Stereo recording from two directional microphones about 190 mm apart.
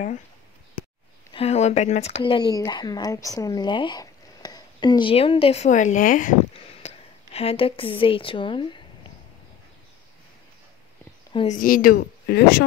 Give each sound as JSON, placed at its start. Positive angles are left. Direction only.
{"t": 1.3, "sound": "speech", "side_deg": 35}
{"t": 2.2, "sound": "speech", "side_deg": 25}
{"t": 6.5, "sound": "speech", "side_deg": 35}
{"t": 11.6, "sound": "speech", "side_deg": 50}